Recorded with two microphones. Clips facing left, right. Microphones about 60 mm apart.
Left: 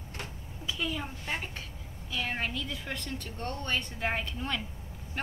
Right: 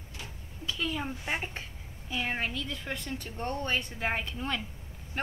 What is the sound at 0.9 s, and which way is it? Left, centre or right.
A woman's voice, centre.